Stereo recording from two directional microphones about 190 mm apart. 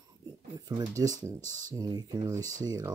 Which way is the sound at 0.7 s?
20° right (ahead or behind).